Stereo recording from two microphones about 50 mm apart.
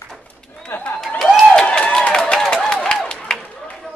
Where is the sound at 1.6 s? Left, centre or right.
Centre.